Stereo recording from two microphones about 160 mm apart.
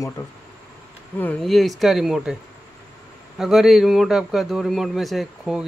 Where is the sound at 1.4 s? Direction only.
Centre (ahead or behind).